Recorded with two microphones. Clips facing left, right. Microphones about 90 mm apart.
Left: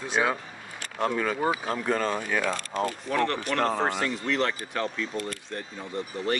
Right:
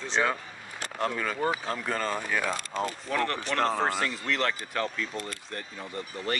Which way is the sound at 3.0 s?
5° left (ahead or behind).